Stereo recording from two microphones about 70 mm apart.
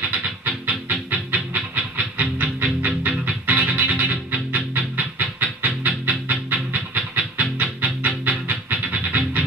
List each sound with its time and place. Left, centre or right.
0.2 s music: right